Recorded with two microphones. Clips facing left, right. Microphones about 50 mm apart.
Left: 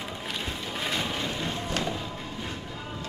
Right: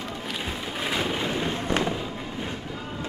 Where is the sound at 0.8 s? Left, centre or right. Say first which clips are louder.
Right 4 dB; centre.